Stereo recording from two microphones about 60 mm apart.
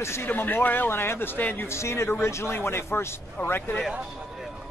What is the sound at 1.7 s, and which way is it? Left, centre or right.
A man's voice, left.